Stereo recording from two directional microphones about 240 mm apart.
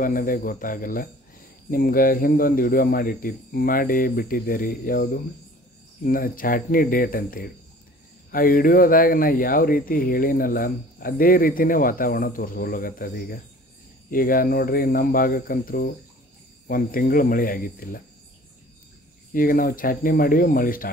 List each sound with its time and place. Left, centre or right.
0.0 s speech: left
19.3 s speech: left